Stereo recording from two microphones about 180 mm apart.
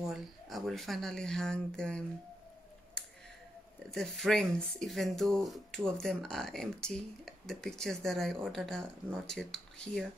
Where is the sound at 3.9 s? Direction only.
Centre (ahead or behind).